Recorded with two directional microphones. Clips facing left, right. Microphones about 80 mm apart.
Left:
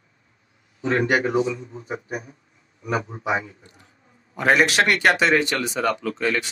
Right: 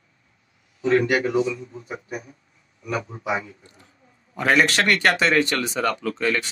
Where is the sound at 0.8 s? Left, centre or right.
Left.